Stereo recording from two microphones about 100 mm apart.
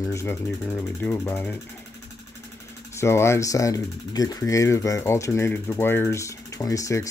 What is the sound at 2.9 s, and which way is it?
Speech, 25° left (ahead or behind).